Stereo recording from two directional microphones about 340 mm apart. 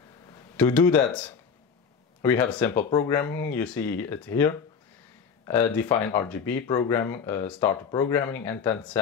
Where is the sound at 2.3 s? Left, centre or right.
Centre.